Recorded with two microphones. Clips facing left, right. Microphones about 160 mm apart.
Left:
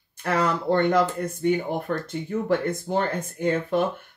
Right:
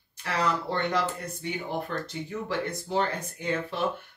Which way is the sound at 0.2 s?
50° left (ahead or behind).